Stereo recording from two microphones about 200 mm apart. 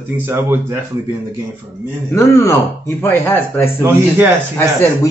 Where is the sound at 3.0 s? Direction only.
10° left (ahead or behind).